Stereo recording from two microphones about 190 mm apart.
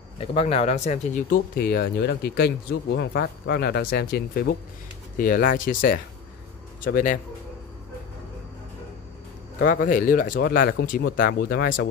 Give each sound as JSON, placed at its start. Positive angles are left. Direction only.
{"t": 0.2, "sound": "speech", "side_deg": 35}
{"t": 9.6, "sound": "speech", "side_deg": 45}